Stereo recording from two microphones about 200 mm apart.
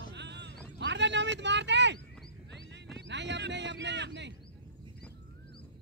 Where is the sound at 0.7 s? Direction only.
60° right (ahead or behind).